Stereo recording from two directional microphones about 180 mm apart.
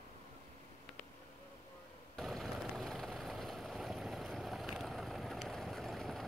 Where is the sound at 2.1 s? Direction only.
Centre (ahead or behind).